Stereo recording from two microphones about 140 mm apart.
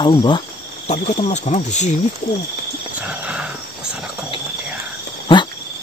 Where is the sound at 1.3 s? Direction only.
55° left (ahead or behind).